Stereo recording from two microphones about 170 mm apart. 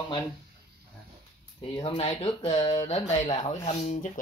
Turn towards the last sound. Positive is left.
turn(degrees=40)  # may be behind; listen again after turning